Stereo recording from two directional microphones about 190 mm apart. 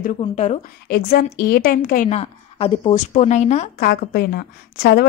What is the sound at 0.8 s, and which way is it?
A woman's voice, 55° left (ahead or behind).